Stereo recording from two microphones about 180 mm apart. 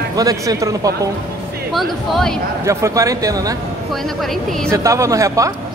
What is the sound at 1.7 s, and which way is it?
Speech, centre (ahead or behind).